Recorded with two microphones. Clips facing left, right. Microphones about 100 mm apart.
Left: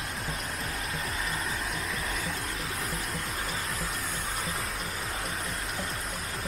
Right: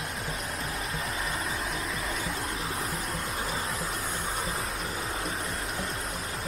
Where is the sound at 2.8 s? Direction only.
Centre (ahead or behind).